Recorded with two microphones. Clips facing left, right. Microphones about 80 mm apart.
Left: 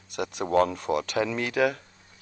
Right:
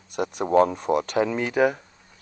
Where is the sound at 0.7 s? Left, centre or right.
Right.